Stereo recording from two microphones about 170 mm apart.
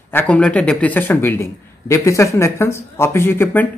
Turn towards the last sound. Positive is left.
turn(degrees=10)  # may be behind; listen again after turning